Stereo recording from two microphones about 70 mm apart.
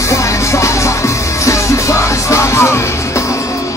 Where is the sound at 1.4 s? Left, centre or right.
Left.